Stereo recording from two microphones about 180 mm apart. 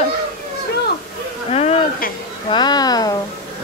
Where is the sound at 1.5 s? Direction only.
35° left (ahead or behind).